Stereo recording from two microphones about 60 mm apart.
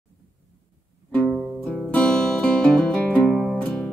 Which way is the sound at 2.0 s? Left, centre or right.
Centre.